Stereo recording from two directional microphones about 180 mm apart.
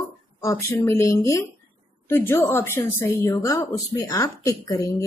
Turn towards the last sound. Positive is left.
turn(degrees=20)  # may be behind; listen again after turning